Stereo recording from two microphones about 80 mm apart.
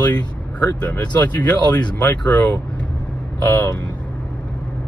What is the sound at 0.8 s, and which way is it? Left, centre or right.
Speech, centre.